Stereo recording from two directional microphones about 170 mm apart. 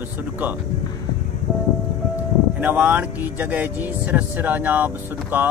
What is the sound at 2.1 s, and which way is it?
Speech, 10° right (ahead or behind).